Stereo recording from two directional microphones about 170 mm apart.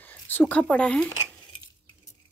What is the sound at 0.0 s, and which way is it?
Speech, 10° left (ahead or behind).